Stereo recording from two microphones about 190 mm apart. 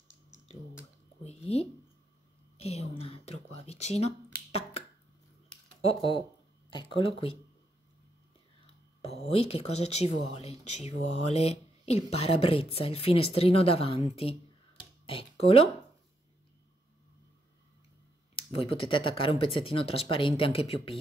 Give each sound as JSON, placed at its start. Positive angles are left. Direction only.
{"t": 1.2, "sound": "a sound", "side_deg": 30}
{"t": 6.7, "sound": "speech", "side_deg": 25}
{"t": 9.0, "sound": "speech", "side_deg": 35}
{"t": 18.3, "sound": "speech", "side_deg": 30}